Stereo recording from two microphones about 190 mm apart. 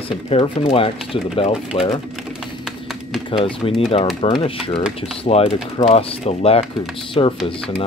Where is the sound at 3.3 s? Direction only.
30° left (ahead or behind).